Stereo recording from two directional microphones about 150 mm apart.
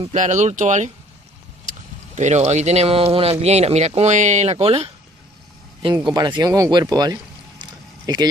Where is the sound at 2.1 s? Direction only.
50° right (ahead or behind).